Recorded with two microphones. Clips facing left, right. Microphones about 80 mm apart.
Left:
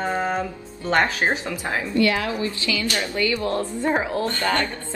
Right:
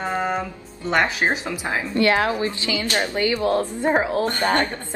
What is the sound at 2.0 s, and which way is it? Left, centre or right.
Speech, right.